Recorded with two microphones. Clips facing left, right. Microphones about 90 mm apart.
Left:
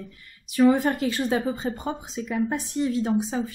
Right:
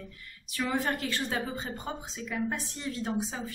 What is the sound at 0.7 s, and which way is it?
Speech, 15° left (ahead or behind).